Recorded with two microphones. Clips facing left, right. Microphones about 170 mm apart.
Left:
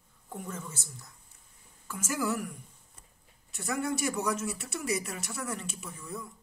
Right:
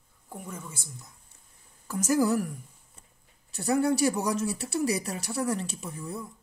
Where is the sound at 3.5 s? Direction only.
35° right (ahead or behind).